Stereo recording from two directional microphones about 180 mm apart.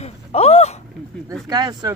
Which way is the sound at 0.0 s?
35° left (ahead or behind).